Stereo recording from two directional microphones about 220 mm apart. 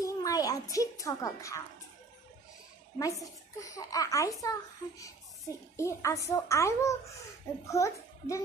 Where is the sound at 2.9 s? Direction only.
15° left (ahead or behind).